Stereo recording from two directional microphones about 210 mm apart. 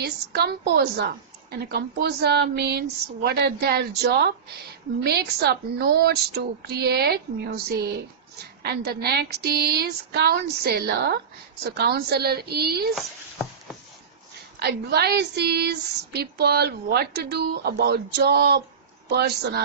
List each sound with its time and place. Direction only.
0.0 s a woman's voice: 50° right (ahead or behind)
12.9 s speech: centre (ahead or behind)
14.6 s a woman's voice: 50° right (ahead or behind)